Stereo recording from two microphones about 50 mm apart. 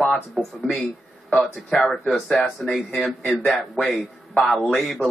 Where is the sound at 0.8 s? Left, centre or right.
Centre.